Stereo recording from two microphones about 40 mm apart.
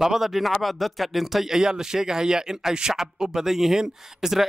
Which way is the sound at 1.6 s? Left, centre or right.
Centre.